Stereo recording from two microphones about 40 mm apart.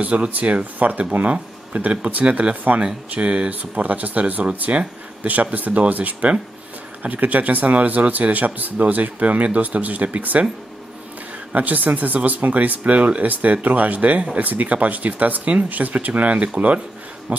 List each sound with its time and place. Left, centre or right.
0.0 s a man's voice: right
5.2 s a man's voice: right
11.5 s a man's voice: right